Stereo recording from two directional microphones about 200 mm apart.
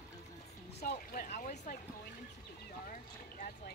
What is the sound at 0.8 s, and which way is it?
Speech, 50° left (ahead or behind).